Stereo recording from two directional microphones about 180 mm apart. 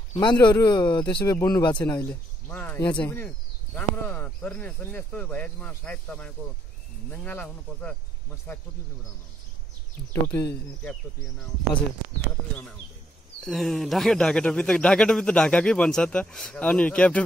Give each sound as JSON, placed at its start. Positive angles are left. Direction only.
{"t": 0.1, "sound": "speech", "side_deg": 25}
{"t": 2.0, "sound": "speech", "side_deg": 10}
{"t": 10.3, "sound": "speech", "side_deg": 10}
{"t": 13.4, "sound": "speech", "side_deg": 0}